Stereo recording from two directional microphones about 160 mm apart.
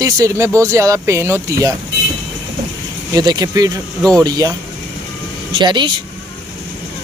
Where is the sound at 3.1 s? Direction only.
25° right (ahead or behind).